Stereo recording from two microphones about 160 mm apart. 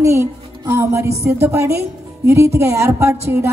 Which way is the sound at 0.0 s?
20° right (ahead or behind).